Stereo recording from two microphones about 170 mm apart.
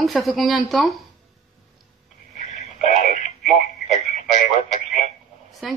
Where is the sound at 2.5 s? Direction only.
40° left (ahead or behind).